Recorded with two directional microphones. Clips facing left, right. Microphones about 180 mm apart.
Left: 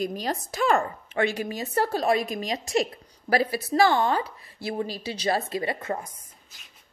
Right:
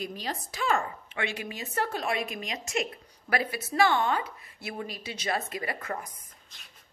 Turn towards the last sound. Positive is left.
turn(degrees=25)  # may be behind; listen again after turning